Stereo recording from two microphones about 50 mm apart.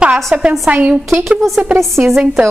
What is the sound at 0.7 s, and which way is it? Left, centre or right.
Speech, right.